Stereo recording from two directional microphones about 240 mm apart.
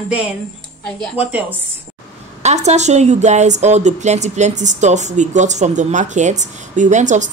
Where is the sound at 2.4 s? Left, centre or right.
Right.